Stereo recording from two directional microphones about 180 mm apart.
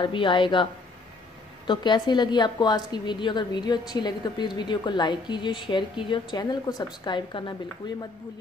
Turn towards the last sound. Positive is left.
turn(degrees=25)  # may be behind; listen again after turning